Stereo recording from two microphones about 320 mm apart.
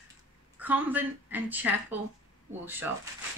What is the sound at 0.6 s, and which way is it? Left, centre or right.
A woman's voice, centre.